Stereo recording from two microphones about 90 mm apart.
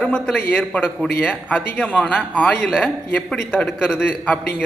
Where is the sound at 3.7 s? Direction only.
5° right (ahead or behind).